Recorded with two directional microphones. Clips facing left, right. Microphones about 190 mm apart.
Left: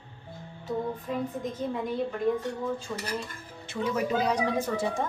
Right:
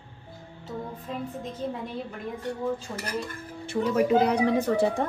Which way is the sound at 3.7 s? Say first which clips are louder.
Right 6 dB; 55° right (ahead or behind).